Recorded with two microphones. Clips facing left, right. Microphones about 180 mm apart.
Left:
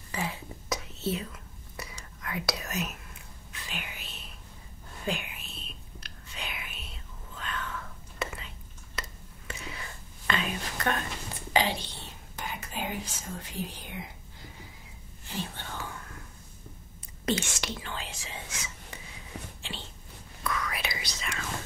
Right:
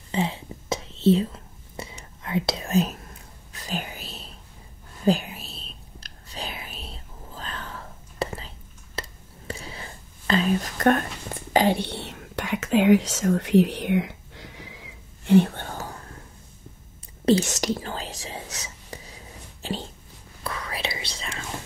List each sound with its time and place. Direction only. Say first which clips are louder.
0.1 s whispering: right 8 dB; 25° right (ahead or behind)
17.3 s whispering: right 10 dB; 40° right (ahead or behind)
20.4 s whispering: right 2 dB; 30° right (ahead or behind)